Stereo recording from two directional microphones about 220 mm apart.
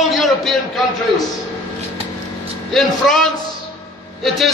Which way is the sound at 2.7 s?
Centre (ahead or behind).